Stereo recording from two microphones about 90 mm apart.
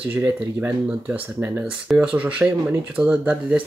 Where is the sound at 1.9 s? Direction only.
20° right (ahead or behind).